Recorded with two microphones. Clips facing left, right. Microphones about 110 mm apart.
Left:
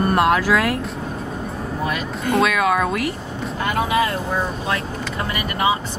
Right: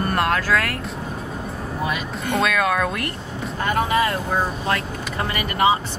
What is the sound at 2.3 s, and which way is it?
Speech, 5° left (ahead or behind).